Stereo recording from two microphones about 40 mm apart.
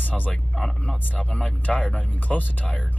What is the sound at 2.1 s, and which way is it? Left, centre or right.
Speech, left.